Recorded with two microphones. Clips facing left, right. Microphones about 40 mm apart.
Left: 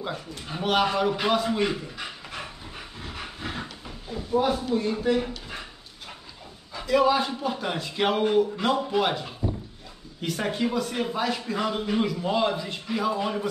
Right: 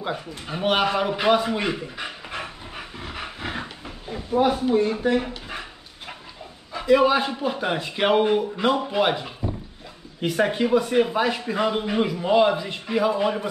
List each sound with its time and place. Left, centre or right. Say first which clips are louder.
0.0 s a man's voice: right 4 dB; centre
0.7 s pant: right 2 dB; right
6.7 s a man's voice: right 4 dB; right